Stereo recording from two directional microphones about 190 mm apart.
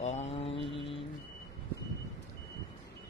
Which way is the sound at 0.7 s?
30° left (ahead or behind).